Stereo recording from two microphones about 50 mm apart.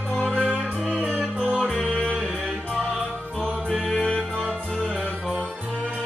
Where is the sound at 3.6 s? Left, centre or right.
Centre.